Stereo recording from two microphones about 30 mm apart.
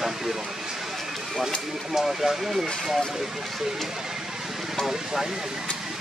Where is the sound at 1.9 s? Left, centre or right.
Centre.